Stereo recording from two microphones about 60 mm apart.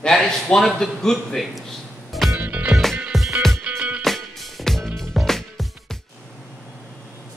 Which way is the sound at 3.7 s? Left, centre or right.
Centre.